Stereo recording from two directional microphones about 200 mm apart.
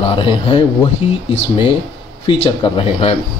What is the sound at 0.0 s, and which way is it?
Speech, 25° left (ahead or behind).